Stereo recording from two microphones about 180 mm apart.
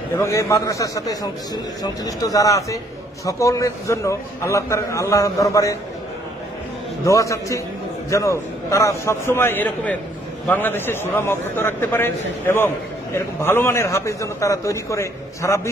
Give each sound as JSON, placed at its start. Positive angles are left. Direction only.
{"t": 0.1, "sound": "a man's voice", "side_deg": 15}
{"t": 7.1, "sound": "a man's voice", "side_deg": 15}